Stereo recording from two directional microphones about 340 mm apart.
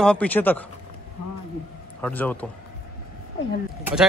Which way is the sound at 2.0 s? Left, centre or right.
Centre.